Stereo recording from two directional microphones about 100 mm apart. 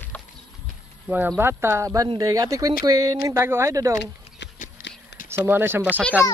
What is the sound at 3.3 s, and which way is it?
Speech, 25° right (ahead or behind).